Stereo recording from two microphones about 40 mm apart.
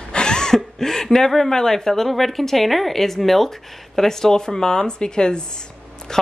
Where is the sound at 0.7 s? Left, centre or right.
Centre.